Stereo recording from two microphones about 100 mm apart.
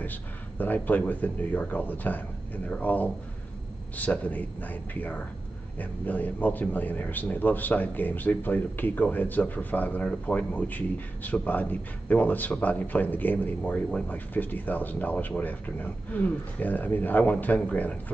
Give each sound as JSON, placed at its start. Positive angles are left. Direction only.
{"t": 0.0, "sound": "speech", "side_deg": 15}